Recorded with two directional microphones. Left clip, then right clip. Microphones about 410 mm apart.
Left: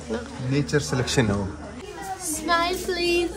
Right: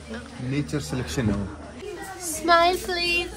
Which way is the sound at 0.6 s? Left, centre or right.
Left.